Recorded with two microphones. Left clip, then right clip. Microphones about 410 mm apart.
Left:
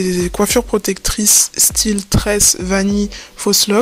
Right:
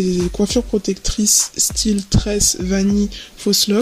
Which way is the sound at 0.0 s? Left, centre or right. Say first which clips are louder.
Left 3 dB; centre.